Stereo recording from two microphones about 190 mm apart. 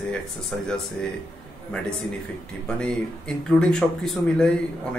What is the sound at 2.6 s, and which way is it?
Speech, 5° left (ahead or behind).